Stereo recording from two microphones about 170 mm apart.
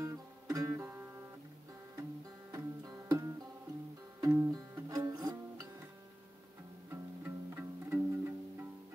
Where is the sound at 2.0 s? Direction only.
20° right (ahead or behind).